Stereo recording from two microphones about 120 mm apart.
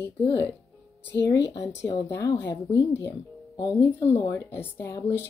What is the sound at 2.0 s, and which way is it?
Speech, 20° left (ahead or behind).